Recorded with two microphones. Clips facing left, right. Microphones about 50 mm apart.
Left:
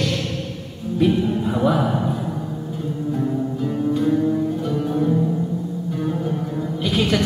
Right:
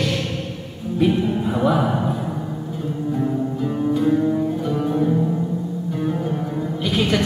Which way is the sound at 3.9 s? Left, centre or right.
Centre.